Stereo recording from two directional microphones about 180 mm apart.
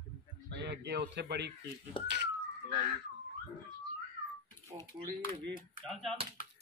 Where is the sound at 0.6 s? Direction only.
70° right (ahead or behind).